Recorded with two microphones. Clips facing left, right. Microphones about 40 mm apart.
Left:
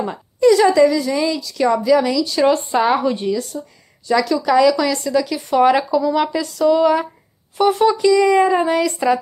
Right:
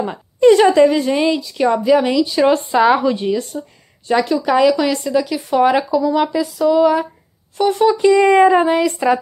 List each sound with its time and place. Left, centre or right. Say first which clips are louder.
0.4 s a woman's voice: right 2 dB; right
1.4 s speech: right 1 dB; right
2.2 s speech: right 1 dB; centre
2.5 s speech: right 3 dB; right
3.6 s speech: right 2 dB; centre
4.1 s speech: even; right
5.2 s speech: left 1 dB; centre
8.0 s a woman's voice: right 4 dB; right
8.5 s speech: right 3 dB; right